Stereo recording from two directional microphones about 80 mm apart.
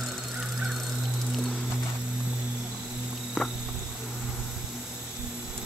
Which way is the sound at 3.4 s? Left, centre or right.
Centre.